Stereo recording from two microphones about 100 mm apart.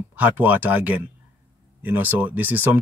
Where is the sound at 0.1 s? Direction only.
15° right (ahead or behind).